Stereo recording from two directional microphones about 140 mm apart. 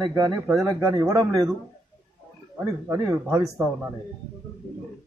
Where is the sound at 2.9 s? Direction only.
25° right (ahead or behind).